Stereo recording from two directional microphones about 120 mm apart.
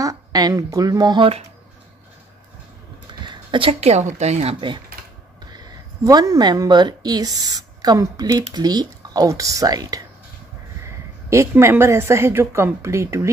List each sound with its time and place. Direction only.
0.0 s speech: 30° right (ahead or behind)
3.3 s a sound: 45° right (ahead or behind)
3.8 s a woman's voice: 65° right (ahead or behind)
4.6 s speech: 40° right (ahead or behind)
6.0 s speech: 30° right (ahead or behind)
11.2 s speech: 25° right (ahead or behind)